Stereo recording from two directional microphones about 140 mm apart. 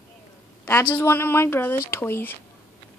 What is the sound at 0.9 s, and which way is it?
Speech, 15° left (ahead or behind).